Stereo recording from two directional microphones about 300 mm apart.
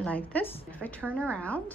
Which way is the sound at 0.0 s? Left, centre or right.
Centre.